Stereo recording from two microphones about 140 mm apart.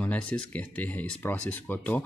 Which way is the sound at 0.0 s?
10° left (ahead or behind).